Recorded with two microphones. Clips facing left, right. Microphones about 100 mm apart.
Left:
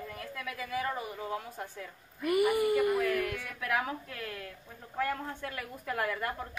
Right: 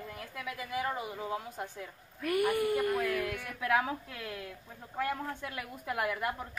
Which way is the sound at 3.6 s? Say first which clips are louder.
Right 3 dB; 25° right (ahead or behind).